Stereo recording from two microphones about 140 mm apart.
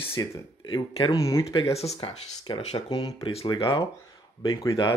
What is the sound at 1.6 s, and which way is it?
Speech, 45° left (ahead or behind).